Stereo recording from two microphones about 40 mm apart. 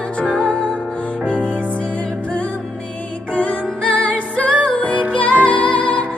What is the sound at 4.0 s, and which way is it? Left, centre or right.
Music, left.